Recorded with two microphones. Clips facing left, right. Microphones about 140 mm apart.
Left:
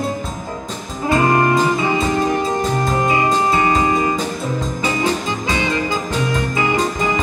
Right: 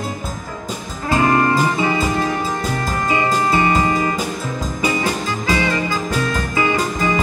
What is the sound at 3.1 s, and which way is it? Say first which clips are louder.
Music: right 1 dB; 20° left (ahead or behind).